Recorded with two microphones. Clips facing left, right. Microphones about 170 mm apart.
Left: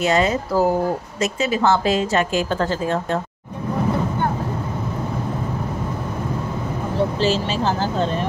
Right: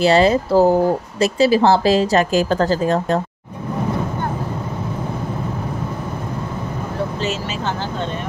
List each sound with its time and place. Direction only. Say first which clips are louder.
0.0 s a woman's voice: right 5 dB; 30° right (ahead or behind)
7.2 s speech: left 4 dB; 30° left (ahead or behind)